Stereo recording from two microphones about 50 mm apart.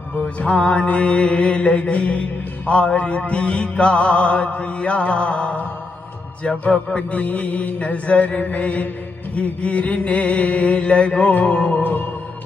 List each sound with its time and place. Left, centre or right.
0.1 s mantra: left
11.8 s music: left